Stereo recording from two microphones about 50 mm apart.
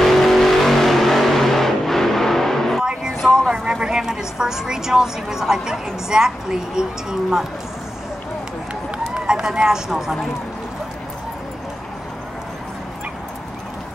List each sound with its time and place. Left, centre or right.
0.0 s vehicle: centre
2.8 s music: centre
3.4 s a sound: centre
6.0 s a woman's voice: centre
9.2 s speech: centre